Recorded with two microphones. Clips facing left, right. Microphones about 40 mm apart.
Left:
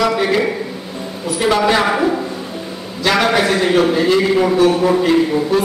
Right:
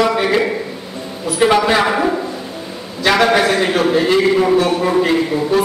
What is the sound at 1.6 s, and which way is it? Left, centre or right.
A man's voice, centre.